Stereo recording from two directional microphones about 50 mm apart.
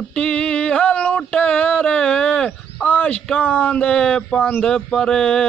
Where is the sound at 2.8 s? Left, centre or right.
Left.